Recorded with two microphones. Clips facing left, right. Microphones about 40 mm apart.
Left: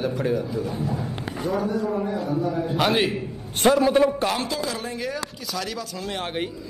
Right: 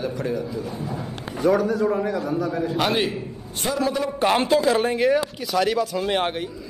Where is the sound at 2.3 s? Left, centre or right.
Right.